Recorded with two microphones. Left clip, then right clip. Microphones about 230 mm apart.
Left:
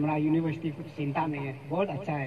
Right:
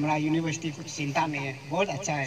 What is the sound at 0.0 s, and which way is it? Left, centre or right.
A man's voice, centre.